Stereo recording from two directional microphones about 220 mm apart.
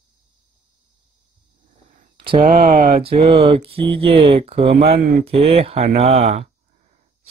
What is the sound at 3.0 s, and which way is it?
Speech, 25° right (ahead or behind).